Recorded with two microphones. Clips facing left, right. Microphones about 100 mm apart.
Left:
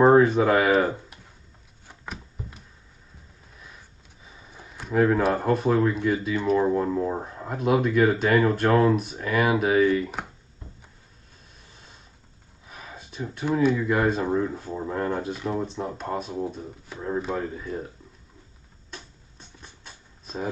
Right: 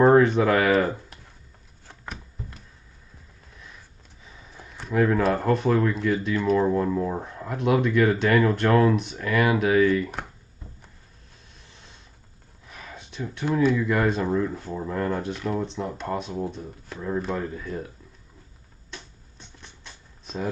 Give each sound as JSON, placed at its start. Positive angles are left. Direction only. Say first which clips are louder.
{"t": 0.2, "sound": "speech", "louder": "even", "side_deg": 5}
{"t": 1.9, "sound": "a sound", "louder": "left 1 dB", "side_deg": 5}
{"t": 4.3, "sound": "speech", "louder": "even", "side_deg": 5}
{"t": 7.5, "sound": "speech", "louder": "even", "side_deg": 5}
{"t": 11.7, "sound": "a sound", "louder": "even", "side_deg": 5}
{"t": 13.8, "sound": "speech", "louder": "even", "side_deg": 10}
{"t": 14.2, "sound": "speech", "louder": "even", "side_deg": 20}
{"t": 15.0, "sound": "speech", "louder": "even", "side_deg": 5}
{"t": 18.9, "sound": "a sound", "louder": "even", "side_deg": 5}